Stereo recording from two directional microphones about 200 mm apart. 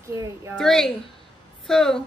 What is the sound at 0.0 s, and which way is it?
Speech, 15° right (ahead or behind).